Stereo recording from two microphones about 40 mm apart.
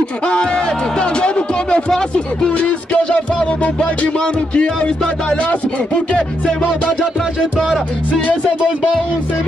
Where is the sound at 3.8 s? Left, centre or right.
Left.